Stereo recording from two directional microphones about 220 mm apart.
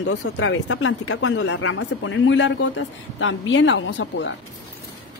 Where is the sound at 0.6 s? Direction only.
70° left (ahead or behind).